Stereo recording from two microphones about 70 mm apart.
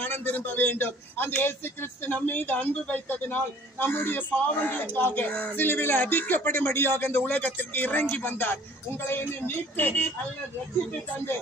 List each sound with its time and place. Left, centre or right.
0.0 s a man's voice: left